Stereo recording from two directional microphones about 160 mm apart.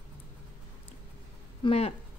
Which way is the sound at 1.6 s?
40° left (ahead or behind).